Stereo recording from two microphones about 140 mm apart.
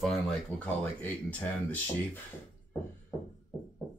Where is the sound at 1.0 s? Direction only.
10° left (ahead or behind).